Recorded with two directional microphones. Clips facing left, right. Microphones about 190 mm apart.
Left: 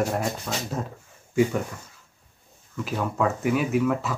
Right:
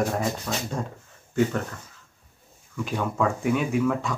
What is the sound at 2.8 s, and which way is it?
Speech, 5° left (ahead or behind).